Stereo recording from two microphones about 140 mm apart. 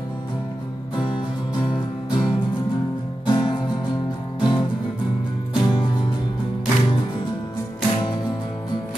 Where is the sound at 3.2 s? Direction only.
35° left (ahead or behind).